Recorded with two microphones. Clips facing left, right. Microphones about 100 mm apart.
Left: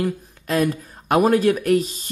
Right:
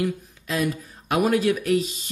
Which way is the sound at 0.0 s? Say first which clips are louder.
Left 2 dB; 50° left (ahead or behind).